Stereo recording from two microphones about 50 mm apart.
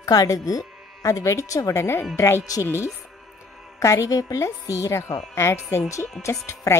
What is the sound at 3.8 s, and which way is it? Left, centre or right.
Speech, left.